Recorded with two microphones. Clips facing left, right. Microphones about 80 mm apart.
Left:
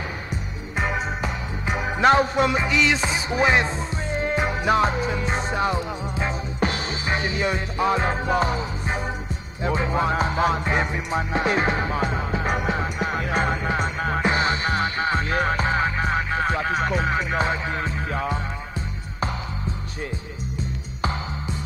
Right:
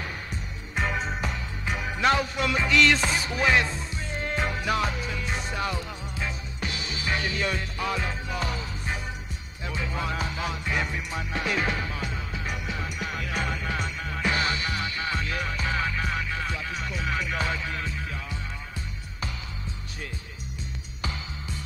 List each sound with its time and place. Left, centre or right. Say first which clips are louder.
0.7 s music: left 3 dB; centre
1.8 s music: left 7 dB; left
2.5 s music: left 1 dB; centre
4.6 s music: left 11 dB; left
6.6 s music: left 9 dB; left
7.1 s music: left 4 dB; left
8.5 s music: left 6 dB; left
9.6 s music: left 9 dB; left
12.8 s music: left 7 dB; left
17.1 s music: left 6 dB; left
18.1 s music: left 11 dB; left